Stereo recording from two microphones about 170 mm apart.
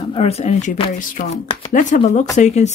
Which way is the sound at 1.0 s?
50° left (ahead or behind).